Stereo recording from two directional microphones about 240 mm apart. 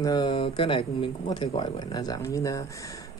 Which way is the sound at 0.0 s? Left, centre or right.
Centre.